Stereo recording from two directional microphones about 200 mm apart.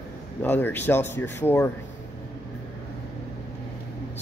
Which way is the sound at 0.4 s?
10° left (ahead or behind).